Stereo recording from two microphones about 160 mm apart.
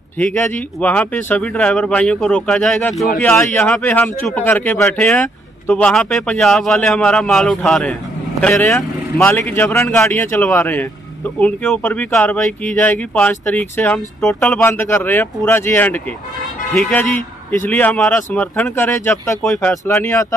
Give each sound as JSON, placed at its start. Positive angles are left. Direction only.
{"t": 0.2, "sound": "speech", "side_deg": 10}